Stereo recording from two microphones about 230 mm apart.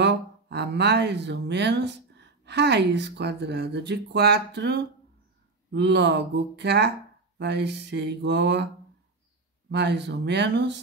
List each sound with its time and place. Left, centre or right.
0.0 s speech: right
9.7 s speech: right